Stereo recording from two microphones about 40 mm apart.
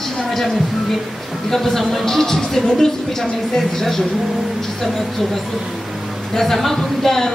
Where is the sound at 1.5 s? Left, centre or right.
Centre.